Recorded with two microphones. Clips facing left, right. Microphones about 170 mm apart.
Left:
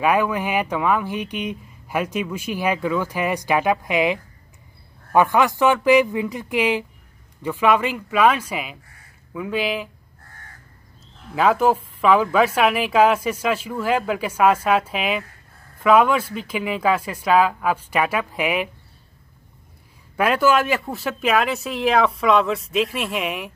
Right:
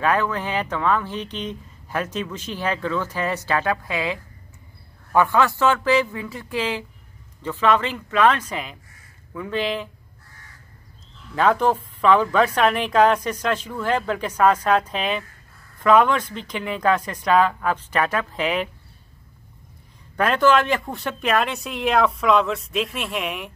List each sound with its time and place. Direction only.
0.0 s speech: 10° left (ahead or behind)
10.2 s crow: 50° left (ahead or behind)
11.3 s speech: 5° left (ahead or behind)
20.2 s speech: 10° left (ahead or behind)